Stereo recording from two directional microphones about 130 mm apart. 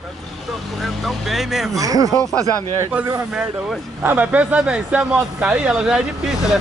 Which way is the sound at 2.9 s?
15° right (ahead or behind).